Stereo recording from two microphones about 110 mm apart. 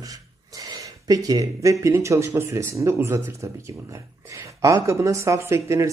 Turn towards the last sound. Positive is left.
turn(degrees=-25)  # may be behind; listen again after turning